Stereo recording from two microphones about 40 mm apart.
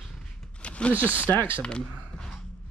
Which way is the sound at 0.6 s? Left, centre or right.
Left.